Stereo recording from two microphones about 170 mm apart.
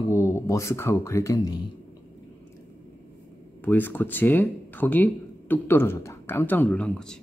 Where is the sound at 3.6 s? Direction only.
10° left (ahead or behind).